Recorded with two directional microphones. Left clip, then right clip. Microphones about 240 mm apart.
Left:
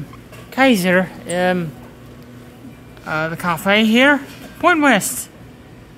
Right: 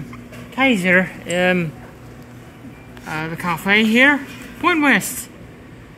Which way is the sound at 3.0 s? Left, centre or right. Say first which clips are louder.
Left 3 dB; left.